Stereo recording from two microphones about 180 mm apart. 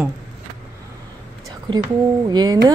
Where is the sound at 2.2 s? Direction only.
20° right (ahead or behind).